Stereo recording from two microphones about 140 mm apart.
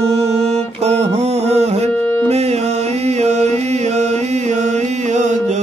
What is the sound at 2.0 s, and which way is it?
Music, 15° left (ahead or behind).